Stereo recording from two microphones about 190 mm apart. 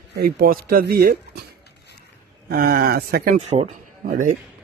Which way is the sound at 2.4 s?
50° right (ahead or behind).